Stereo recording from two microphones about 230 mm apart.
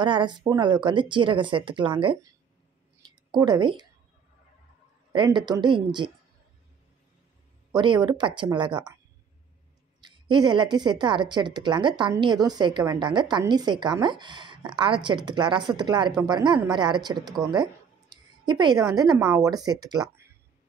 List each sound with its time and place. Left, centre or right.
0.0 s a woman's voice: centre
3.0 s a sound: centre
5.1 s a woman's voice: centre
7.7 s a woman's voice: centre
10.0 s a woman's voice: centre